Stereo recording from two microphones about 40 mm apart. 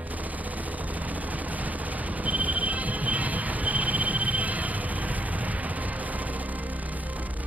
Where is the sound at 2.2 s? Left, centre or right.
Right.